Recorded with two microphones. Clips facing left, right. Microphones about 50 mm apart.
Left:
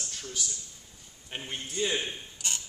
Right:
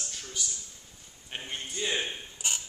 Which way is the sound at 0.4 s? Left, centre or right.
Centre.